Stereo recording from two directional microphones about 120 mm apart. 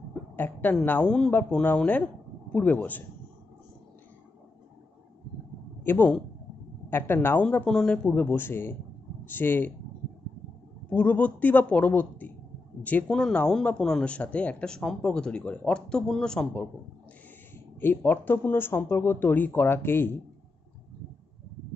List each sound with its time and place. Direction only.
0.8 s speech: 10° left (ahead or behind)
5.9 s speech: 15° left (ahead or behind)
10.9 s speech: 10° left (ahead or behind)
17.7 s speech: 15° left (ahead or behind)